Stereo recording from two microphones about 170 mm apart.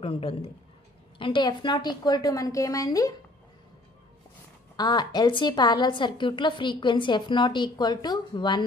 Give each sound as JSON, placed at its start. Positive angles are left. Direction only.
{"t": 0.0, "sound": "a woman's voice", "side_deg": 35}
{"t": 4.7, "sound": "a woman's voice", "side_deg": 25}